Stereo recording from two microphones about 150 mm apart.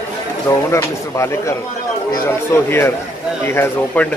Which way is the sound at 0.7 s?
20° left (ahead or behind).